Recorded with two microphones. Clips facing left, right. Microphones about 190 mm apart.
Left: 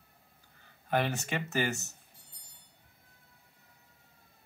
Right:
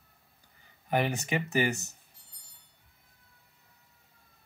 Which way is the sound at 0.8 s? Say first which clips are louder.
Right 2 dB; 15° right (ahead or behind).